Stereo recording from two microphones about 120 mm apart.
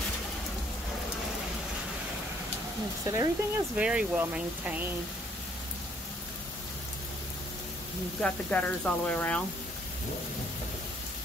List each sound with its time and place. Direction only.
3.1 s speech: 25° right (ahead or behind)
3.7 s speech: 10° right (ahead or behind)
8.2 s speech: 10° left (ahead or behind)